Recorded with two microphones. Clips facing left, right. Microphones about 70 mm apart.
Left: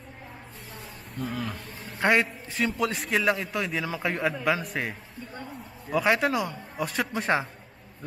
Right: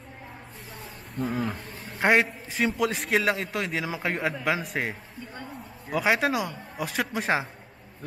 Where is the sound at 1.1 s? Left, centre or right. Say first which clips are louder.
Right 4 dB; centre.